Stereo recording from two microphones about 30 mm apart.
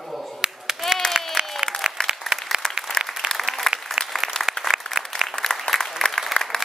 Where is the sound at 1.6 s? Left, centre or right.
Right.